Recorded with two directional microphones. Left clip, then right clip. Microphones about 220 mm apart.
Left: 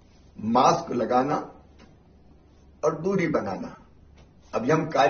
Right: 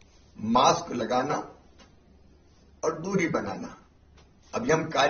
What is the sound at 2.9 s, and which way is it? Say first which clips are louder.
A man's voice: left 2 dB; 15° right (ahead or behind).